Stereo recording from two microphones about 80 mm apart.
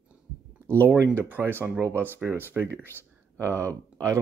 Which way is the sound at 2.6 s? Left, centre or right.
Centre.